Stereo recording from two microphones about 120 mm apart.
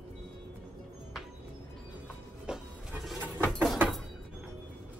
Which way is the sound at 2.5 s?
5° right (ahead or behind).